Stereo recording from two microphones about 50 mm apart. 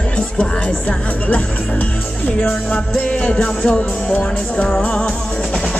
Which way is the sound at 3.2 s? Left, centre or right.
Centre.